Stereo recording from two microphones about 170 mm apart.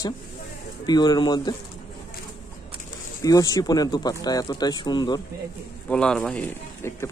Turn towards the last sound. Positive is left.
turn(degrees=5)  # may be behind; listen again after turning